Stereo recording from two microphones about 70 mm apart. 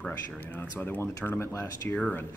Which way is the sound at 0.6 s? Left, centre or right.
Left.